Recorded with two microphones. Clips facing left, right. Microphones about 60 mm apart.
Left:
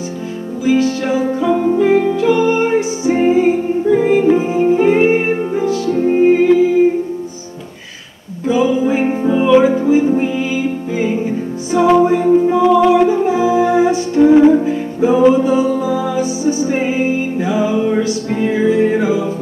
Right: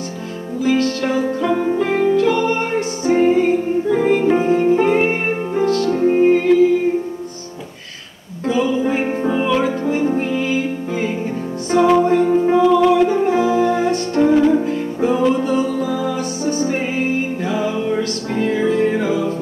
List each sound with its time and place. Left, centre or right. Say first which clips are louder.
0.7 s music: left 3 dB; centre
8.5 s music: left 4 dB; centre